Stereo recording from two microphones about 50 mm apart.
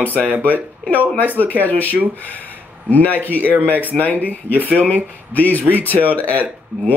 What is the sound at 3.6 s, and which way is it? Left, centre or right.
Speech, right.